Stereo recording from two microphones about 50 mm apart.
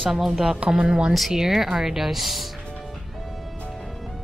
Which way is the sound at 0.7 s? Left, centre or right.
Centre.